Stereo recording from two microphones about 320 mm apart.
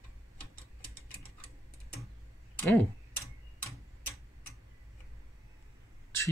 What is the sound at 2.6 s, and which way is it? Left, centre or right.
Tick-tock, centre.